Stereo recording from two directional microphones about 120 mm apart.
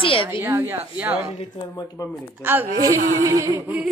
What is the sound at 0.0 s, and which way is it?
Speech, 50° left (ahead or behind).